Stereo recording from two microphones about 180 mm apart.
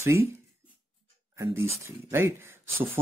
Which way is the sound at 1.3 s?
15° right (ahead or behind).